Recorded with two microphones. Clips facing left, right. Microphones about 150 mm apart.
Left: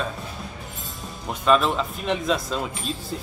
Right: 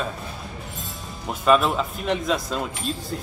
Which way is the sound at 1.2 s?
5° right (ahead or behind).